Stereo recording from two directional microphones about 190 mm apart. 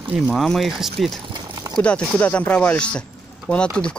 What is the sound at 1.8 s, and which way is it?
Speech, 5° left (ahead or behind).